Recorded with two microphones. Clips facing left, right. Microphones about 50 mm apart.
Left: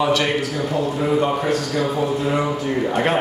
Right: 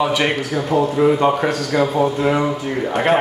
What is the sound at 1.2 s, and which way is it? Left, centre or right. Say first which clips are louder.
A man's voice: right 3 dB; right.